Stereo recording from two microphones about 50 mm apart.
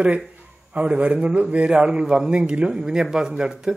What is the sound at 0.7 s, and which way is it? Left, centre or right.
A man's voice, right.